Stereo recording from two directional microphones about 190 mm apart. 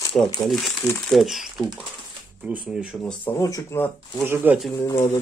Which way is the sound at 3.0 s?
10° left (ahead or behind).